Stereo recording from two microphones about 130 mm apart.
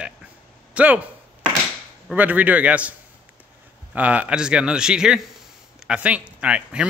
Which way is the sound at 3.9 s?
10° right (ahead or behind).